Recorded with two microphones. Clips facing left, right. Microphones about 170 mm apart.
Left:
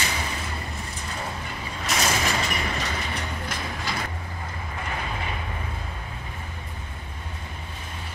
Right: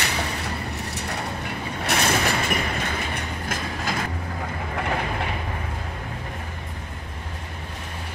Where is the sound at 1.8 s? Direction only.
60° right (ahead or behind).